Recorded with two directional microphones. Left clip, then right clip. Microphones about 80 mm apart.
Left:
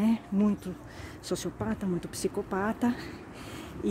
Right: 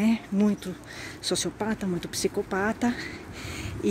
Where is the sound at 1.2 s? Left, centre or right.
Centre.